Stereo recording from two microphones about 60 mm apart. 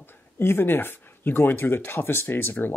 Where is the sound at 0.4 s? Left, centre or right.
Left.